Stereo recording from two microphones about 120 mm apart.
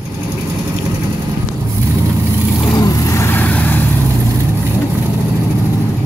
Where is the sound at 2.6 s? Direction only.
30° left (ahead or behind); by 3.8 s 15° left (ahead or behind).